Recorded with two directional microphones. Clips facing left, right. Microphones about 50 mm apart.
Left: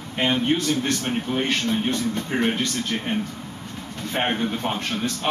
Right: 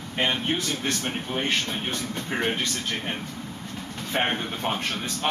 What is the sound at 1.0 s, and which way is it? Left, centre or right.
A man's voice, centre.